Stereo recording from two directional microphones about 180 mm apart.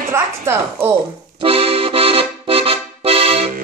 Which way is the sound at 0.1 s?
15° right (ahead or behind).